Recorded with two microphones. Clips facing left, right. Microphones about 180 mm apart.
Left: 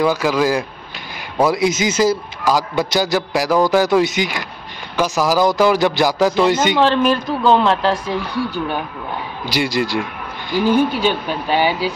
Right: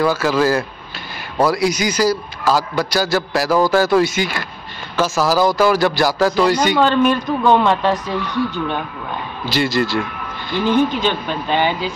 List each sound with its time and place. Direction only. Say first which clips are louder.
0.0 s a man's voice: even; 15° left (ahead or behind)
6.8 s speech: even; centre (ahead or behind)
8.5 s a man's voice: even; 10° left (ahead or behind)